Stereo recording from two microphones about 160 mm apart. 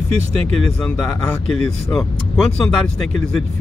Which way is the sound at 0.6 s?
5° left (ahead or behind).